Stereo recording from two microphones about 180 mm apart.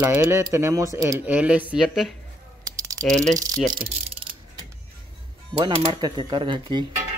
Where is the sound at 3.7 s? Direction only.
30° right (ahead or behind).